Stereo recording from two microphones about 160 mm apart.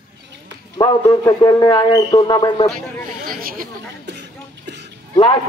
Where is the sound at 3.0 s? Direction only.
60° right (ahead or behind).